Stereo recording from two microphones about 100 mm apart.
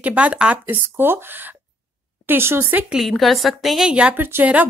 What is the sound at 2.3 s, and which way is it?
Speech, 25° right (ahead or behind).